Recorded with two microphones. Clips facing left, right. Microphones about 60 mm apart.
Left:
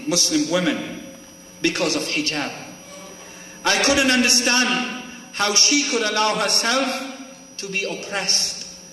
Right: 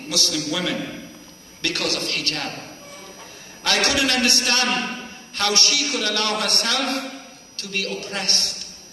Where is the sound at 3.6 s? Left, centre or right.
Left.